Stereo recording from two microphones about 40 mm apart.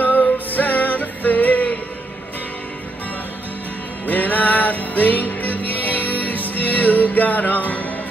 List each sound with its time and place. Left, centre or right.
0.0 s music: left
4.0 s music: left